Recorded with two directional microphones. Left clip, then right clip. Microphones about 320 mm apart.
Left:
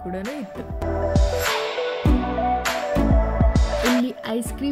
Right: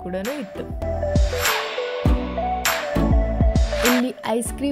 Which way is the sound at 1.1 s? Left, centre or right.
Centre.